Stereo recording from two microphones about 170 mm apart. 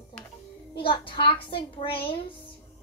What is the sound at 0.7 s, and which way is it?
A child's voice, 30° left (ahead or behind).